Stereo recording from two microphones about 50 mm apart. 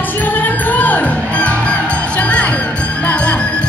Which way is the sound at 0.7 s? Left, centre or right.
Left.